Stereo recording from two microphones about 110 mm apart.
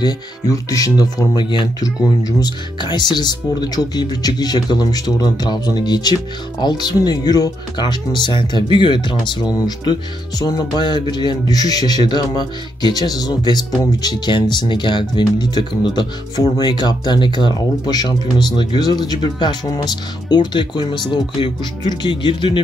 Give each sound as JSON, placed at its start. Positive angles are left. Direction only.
{"t": 0.0, "sound": "speech", "side_deg": 35}